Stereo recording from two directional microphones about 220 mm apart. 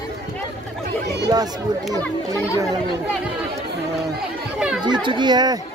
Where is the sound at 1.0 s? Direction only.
50° right (ahead or behind).